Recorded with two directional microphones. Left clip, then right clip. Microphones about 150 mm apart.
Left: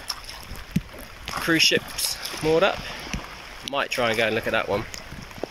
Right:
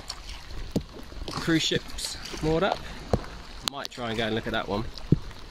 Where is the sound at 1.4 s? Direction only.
15° right (ahead or behind).